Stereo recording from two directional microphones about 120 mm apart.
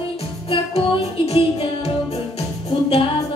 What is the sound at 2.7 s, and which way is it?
Music, 55° left (ahead or behind).